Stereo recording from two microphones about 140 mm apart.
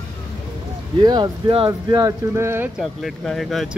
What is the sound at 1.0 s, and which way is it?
Speech, 35° right (ahead or behind).